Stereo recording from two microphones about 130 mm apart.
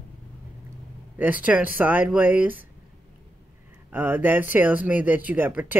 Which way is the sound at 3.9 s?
15° right (ahead or behind).